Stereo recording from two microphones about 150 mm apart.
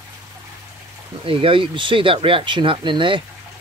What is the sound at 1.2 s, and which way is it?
Speech, 35° right (ahead or behind).